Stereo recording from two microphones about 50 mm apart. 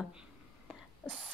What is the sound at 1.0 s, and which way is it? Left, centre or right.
Speech, centre.